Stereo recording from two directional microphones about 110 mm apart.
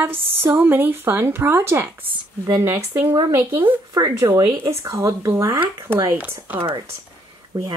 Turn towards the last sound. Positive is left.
turn(degrees=-35)  # may be behind; listen again after turning